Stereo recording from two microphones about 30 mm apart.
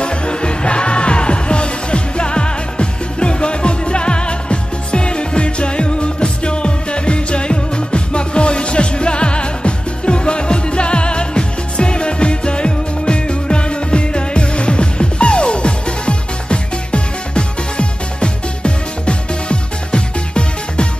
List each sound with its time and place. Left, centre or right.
0.0 s music: left